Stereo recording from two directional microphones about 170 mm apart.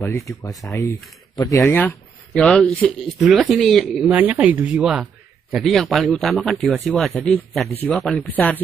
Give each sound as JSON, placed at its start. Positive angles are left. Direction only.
{"t": 0.0, "sound": "speech", "side_deg": 20}
{"t": 1.8, "sound": "speech", "side_deg": 5}
{"t": 4.0, "sound": "speech", "side_deg": -10}